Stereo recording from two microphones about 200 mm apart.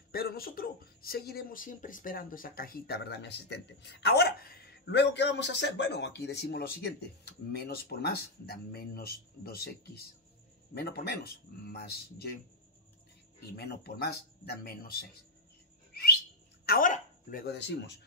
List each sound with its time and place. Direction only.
0.1 s speech: 50° left (ahead or behind)
13.4 s speech: 55° left (ahead or behind)
15.9 s bird: 50° left (ahead or behind)
16.6 s speech: 45° left (ahead or behind)